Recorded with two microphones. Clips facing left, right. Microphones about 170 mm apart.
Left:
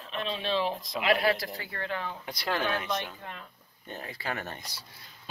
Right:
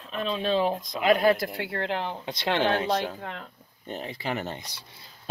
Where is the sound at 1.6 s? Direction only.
70° right (ahead or behind).